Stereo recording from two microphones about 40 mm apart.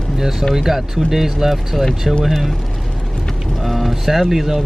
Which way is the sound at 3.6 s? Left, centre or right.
Centre.